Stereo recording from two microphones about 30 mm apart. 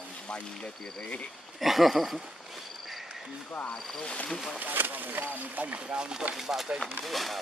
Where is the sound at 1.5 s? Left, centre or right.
Centre.